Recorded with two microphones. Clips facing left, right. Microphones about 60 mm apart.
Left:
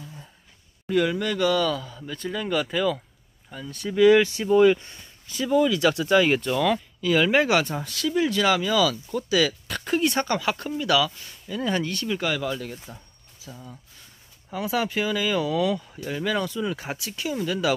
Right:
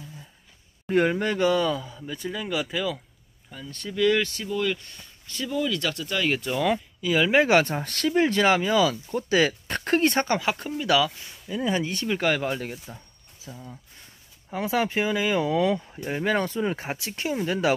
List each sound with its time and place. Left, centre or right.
0.0 s a sound: centre
0.8 s speech: right; by 2.0 s centre
2.2 s speech: centre
5.3 s speech: centre
6.3 s speech: centre
7.6 s speech: right
10.2 s speech: right
11.9 s speech: right
13.5 s speech: centre
14.5 s speech: right